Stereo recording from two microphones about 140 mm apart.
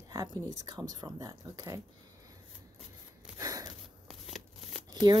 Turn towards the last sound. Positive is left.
turn(degrees=-30)  # may be behind; listen again after turning